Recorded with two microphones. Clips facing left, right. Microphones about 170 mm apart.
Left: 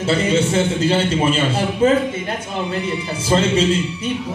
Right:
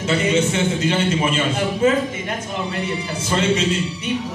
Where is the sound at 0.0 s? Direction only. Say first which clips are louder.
Left 1 dB; 30° left (ahead or behind).